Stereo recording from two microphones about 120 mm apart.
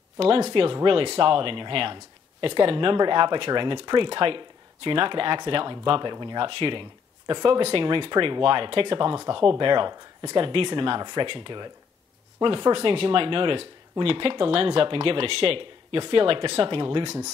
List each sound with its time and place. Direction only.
0.2 s speech: 50° right (ahead or behind)